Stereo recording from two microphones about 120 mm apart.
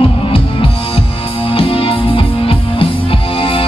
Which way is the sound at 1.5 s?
50° left (ahead or behind).